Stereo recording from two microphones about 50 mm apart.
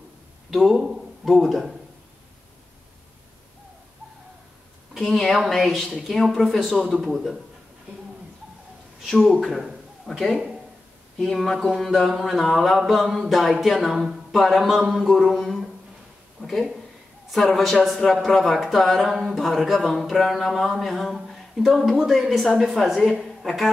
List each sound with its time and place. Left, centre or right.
0.5 s speech: centre
4.9 s speech: centre
7.0 s a sound: centre
9.0 s speech: centre
15.0 s a sound: centre
16.3 s a woman's voice: centre